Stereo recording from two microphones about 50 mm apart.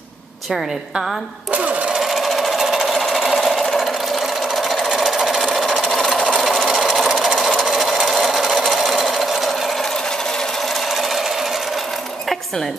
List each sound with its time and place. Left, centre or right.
0.5 s a woman's voice: centre
1.5 s speech: right
2.0 s sewing machine: centre
5.8 s a sound: centre
6.4 s sewing machine: centre